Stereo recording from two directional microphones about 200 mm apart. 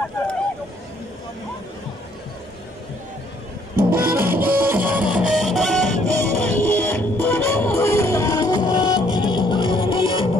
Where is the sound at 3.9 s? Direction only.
10° right (ahead or behind).